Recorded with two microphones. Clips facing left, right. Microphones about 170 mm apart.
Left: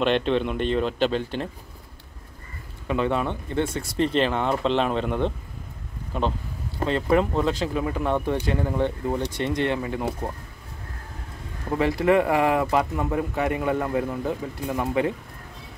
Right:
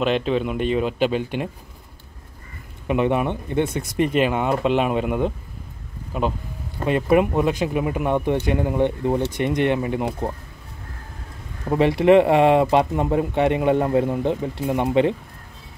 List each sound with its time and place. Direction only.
0.0 s speech: 5° right (ahead or behind)
2.9 s speech: 15° right (ahead or behind)
11.7 s speech: 25° right (ahead or behind)